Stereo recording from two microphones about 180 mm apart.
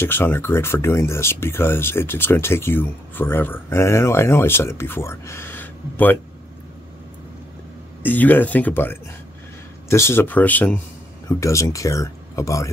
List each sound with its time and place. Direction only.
0.0 s speech: 10° left (ahead or behind)
8.0 s speech: 10° left (ahead or behind)